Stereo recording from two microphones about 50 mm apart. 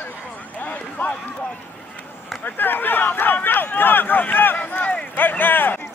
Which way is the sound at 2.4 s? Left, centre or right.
Left.